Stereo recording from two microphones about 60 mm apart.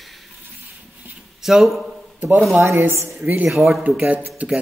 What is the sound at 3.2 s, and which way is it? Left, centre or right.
Speech, right.